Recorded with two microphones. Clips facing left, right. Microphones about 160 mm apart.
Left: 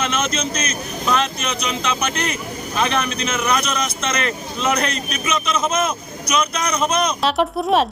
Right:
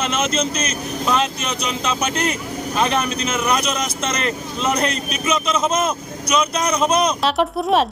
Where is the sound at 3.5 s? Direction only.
35° right (ahead or behind).